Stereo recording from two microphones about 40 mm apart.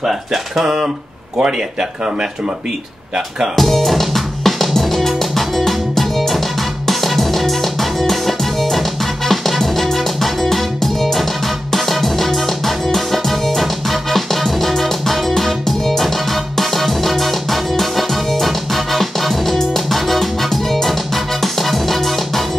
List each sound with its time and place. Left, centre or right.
0.0 s speech: centre
3.5 s music: centre